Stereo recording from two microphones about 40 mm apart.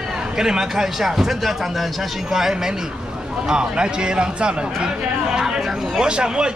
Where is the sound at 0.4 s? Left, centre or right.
Centre.